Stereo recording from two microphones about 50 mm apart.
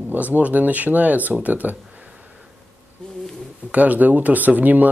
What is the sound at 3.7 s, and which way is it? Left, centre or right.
Speech, right.